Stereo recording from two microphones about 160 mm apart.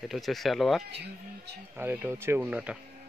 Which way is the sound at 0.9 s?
90° right.